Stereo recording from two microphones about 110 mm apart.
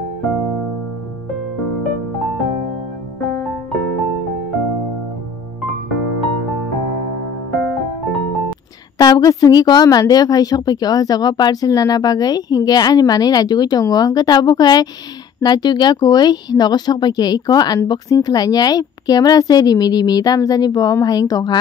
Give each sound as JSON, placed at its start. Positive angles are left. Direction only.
{"t": 8.9, "sound": "a woman's voice", "side_deg": 35}